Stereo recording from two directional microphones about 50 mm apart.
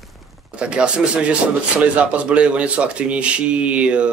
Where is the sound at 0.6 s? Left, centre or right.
Right.